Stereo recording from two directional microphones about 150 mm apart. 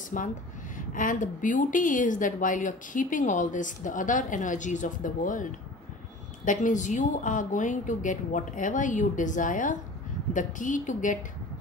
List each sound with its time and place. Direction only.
0.1 s a woman's voice: 60° left (ahead or behind)